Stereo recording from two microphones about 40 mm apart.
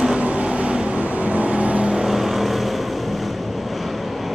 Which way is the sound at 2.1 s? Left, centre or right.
Centre.